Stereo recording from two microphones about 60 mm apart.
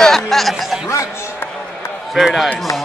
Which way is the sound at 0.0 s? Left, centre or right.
Centre.